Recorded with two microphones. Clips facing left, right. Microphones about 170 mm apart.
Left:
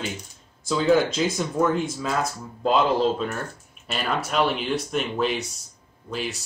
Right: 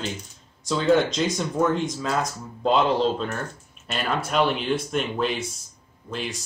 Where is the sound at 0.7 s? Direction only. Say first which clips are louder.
Even; 5° left (ahead or behind).